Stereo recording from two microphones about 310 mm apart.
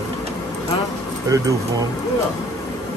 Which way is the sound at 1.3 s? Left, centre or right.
Centre.